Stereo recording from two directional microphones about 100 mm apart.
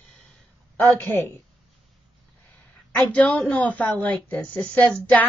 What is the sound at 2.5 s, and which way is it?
A woman's voice, 15° left (ahead or behind).